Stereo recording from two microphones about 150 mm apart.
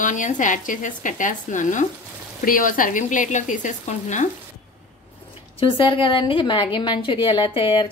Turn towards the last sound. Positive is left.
turn(degrees=35)  # may be behind; listen again after turning